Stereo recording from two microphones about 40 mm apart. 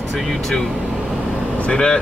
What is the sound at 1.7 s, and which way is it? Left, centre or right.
Speech, left.